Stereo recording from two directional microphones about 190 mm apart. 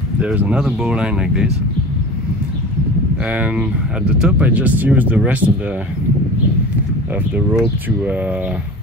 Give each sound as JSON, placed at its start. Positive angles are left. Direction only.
{"t": 0.2, "sound": "speech", "side_deg": -5}
{"t": 4.2, "sound": "speech", "side_deg": -5}
{"t": 7.3, "sound": "speech", "side_deg": -10}